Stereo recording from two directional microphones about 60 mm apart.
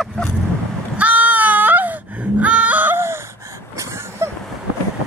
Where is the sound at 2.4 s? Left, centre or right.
Right.